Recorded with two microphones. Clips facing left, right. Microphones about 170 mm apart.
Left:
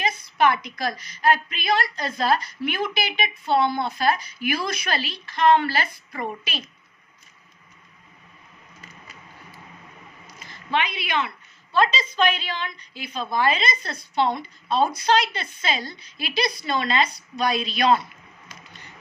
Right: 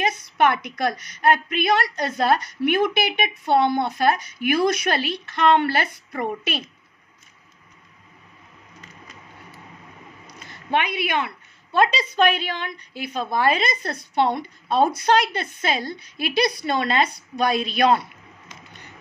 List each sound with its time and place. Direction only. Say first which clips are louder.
0.4 s a woman's voice: right 1 dB; 65° right (ahead or behind)
10.7 s a woman's voice: right 2 dB; 55° right (ahead or behind)